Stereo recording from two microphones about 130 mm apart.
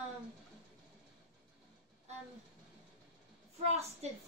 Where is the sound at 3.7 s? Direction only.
55° right (ahead or behind).